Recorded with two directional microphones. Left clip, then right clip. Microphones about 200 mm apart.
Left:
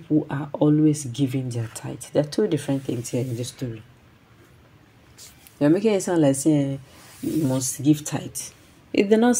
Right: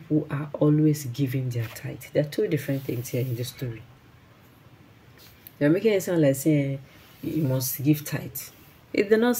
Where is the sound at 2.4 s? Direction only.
15° left (ahead or behind).